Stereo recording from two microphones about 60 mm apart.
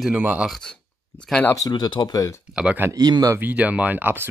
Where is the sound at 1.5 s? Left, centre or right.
Left.